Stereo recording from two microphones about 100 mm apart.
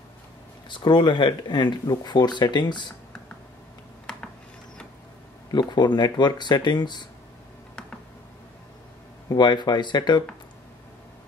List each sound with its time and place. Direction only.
0.7 s speech: 50° left (ahead or behind)
5.5 s speech: 45° left (ahead or behind)
9.3 s speech: 45° left (ahead or behind)